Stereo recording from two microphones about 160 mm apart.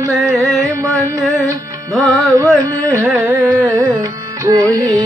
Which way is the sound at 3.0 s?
10° right (ahead or behind).